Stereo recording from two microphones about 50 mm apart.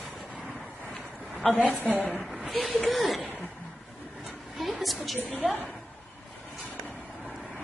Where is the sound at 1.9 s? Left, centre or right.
Centre.